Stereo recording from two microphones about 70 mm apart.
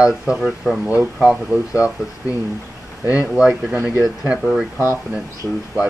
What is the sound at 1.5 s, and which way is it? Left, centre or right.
Speech, left.